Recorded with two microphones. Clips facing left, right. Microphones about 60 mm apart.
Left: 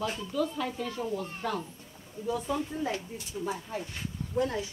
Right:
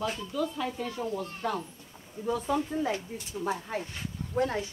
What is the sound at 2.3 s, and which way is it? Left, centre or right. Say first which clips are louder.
Speech: right 2 dB; right.